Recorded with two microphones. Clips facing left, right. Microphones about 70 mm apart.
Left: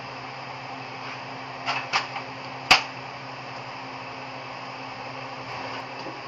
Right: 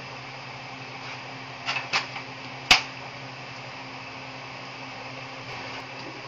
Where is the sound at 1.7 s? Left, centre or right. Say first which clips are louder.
Left 3 dB; left.